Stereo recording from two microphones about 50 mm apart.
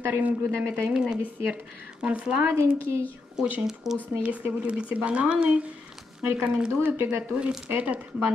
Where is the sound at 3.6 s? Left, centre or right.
Centre.